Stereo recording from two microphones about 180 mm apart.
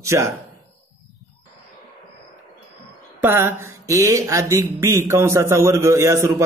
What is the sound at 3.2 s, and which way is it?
A man's voice, 15° right (ahead or behind).